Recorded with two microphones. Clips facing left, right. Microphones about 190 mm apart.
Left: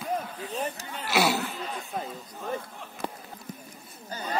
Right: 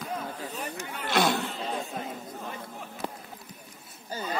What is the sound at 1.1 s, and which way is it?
Chatter, 5° left (ahead or behind).